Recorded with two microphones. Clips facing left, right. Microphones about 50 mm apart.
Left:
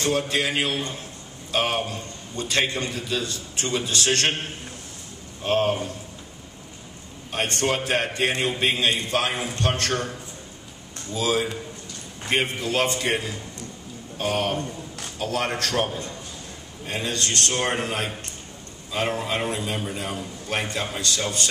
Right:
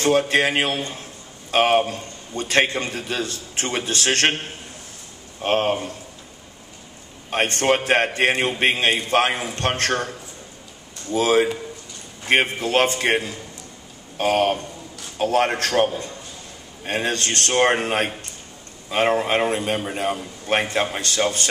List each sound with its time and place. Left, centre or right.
0.0 s a man's voice: right
5.4 s a man's voice: right
7.2 s a man's voice: right
11.1 s a man's voice: right